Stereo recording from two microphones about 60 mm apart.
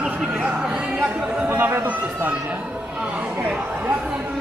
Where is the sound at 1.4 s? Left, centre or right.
Right.